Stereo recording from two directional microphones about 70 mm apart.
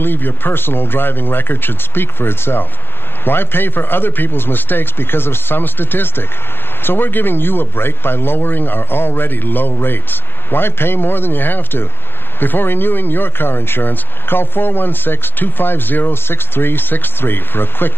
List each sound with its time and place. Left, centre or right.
0.0 s speech: left